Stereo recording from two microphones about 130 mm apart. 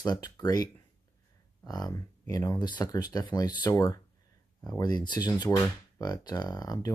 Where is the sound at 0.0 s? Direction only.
30° left (ahead or behind).